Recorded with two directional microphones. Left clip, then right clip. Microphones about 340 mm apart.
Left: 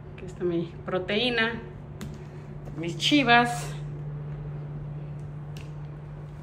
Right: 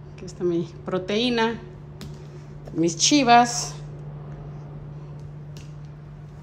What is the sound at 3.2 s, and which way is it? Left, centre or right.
Speech, centre.